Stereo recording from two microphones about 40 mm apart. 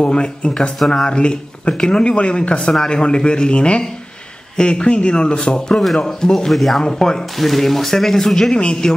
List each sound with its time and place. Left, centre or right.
0.0 s speech: left
6.0 s speech: centre
6.5 s speech: centre
6.8 s speech: centre
7.3 s speech: centre
8.5 s speech: left